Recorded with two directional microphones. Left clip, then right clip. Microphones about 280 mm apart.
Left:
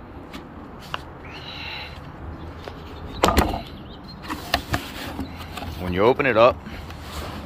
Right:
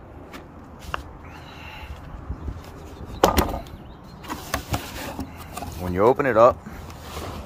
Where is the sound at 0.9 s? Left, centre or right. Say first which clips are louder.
Even; centre.